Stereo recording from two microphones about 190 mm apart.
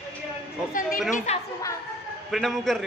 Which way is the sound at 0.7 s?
45° left (ahead or behind).